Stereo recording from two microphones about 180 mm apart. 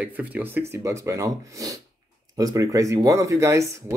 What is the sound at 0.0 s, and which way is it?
Speech, 10° right (ahead or behind).